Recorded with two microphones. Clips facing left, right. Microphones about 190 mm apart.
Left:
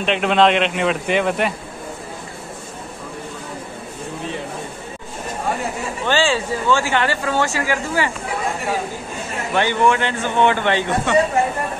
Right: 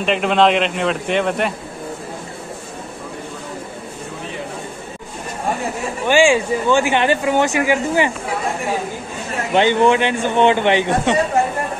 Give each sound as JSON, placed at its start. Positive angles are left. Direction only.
{"t": 0.0, "sound": "a man's voice", "side_deg": 0}
{"t": 6.0, "sound": "speech", "side_deg": -15}
{"t": 9.5, "sound": "a man's voice", "side_deg": -20}